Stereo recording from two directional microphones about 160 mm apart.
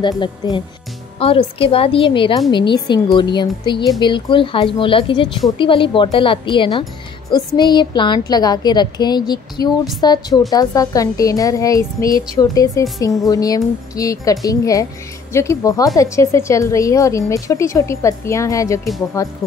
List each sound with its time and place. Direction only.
0.0 s speech: 30° left (ahead or behind)